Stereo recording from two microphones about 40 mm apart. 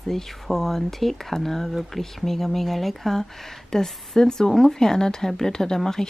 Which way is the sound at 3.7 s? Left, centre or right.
Centre.